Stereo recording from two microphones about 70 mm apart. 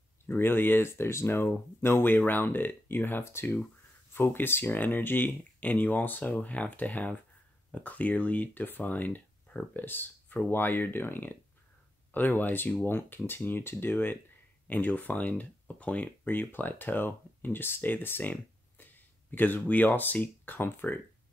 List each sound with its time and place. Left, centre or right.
0.3 s speech: left